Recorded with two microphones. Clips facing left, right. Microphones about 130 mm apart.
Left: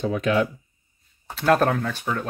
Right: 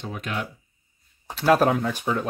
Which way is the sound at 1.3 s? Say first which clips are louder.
Even; 5° right (ahead or behind).